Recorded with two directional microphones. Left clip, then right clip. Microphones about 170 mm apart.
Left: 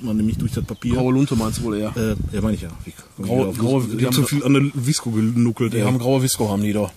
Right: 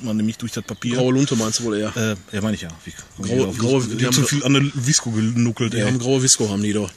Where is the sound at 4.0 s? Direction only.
5° right (ahead or behind).